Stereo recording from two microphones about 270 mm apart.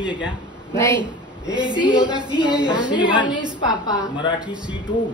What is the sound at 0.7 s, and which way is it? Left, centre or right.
Speech, centre.